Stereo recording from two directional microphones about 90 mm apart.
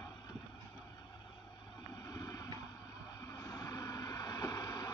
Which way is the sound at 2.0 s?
45° left (ahead or behind).